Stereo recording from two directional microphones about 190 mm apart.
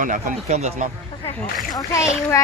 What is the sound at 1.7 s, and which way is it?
Speech, 15° left (ahead or behind).